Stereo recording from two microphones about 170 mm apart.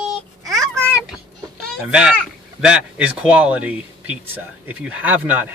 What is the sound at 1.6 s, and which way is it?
Speech, centre (ahead or behind).